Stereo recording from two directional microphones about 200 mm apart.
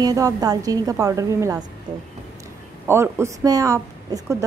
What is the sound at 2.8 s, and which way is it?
A woman's voice, 10° right (ahead or behind).